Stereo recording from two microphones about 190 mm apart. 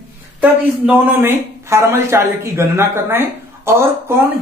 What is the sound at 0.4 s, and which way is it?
A man's voice, 10° right (ahead or behind).